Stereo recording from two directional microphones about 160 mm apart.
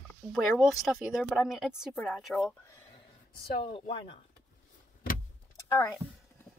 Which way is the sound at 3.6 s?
35° left (ahead or behind).